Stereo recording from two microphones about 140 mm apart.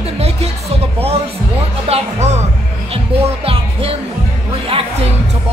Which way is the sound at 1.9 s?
50° right (ahead or behind).